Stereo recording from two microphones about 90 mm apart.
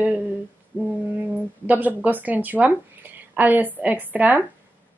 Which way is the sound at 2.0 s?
20° right (ahead or behind).